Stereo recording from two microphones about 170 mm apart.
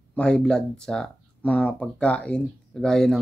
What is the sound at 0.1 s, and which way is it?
Speech, 5° left (ahead or behind).